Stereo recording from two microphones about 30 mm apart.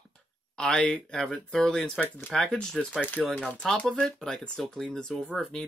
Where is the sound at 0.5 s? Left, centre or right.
Left.